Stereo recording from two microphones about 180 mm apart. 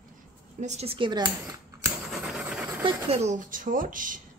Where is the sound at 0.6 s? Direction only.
35° right (ahead or behind); by 1.9 s 20° right (ahead or behind).